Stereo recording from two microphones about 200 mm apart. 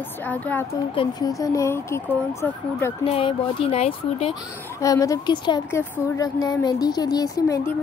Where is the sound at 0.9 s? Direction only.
20° left (ahead or behind).